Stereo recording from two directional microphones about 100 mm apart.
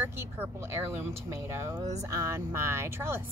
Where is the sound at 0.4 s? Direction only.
25° right (ahead or behind).